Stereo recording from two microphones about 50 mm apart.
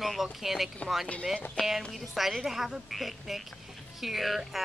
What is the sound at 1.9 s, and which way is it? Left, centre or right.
Speech, centre.